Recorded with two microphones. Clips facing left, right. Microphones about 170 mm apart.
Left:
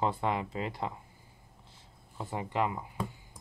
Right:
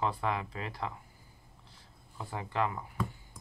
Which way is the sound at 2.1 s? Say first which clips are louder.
Left 2 dB; 20° left (ahead or behind).